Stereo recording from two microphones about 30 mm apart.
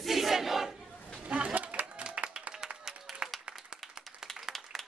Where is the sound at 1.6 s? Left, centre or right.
Right.